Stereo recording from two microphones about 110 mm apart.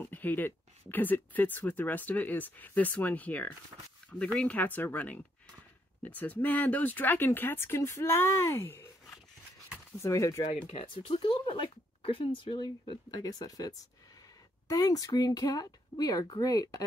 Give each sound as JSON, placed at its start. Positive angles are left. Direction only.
{"t": 0.0, "sound": "speech", "side_deg": 15}
{"t": 10.0, "sound": "speech", "side_deg": 25}
{"t": 10.7, "sound": "speech", "side_deg": 50}
{"t": 13.2, "sound": "speech", "side_deg": 35}